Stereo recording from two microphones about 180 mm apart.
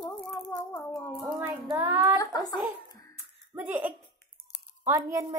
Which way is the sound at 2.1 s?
20° left (ahead or behind).